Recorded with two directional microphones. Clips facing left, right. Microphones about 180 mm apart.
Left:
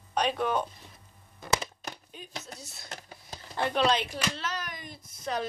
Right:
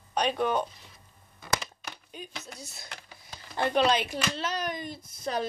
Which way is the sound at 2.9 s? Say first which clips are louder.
Left 3 dB; 40° left (ahead or behind).